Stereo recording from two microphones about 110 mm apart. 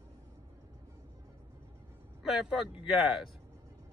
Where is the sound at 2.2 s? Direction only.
5° right (ahead or behind).